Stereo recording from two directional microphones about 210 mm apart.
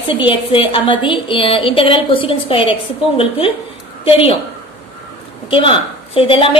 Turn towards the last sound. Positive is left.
turn(degrees=25)  # may be behind; listen again after turning